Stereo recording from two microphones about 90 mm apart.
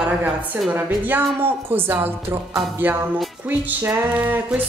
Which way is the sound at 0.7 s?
20° right (ahead or behind).